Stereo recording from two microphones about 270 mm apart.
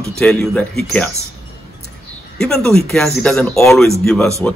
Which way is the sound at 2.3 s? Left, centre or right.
Centre.